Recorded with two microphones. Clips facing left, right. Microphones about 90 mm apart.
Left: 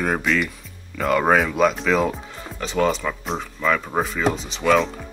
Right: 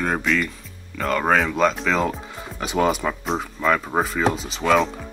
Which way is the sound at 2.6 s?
10° right (ahead or behind).